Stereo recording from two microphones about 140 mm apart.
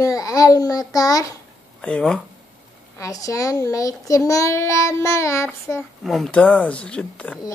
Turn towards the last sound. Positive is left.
turn(degrees=5)  # may be behind; listen again after turning